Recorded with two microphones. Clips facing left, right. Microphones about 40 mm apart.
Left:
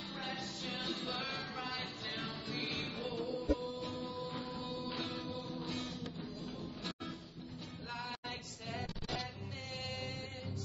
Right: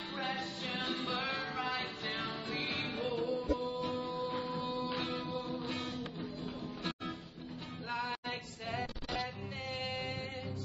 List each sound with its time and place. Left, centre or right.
0.2 s music: centre
5.3 s music: right
7.9 s music: centre